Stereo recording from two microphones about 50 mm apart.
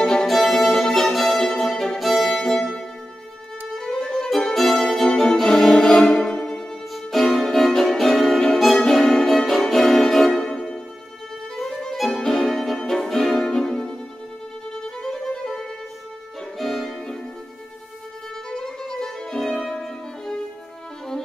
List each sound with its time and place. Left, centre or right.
0.0 s music: centre
15.0 s violin: centre
16.5 s music: centre
18.6 s music: centre